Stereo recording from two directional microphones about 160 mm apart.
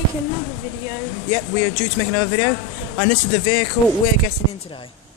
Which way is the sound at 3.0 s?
35° left (ahead or behind).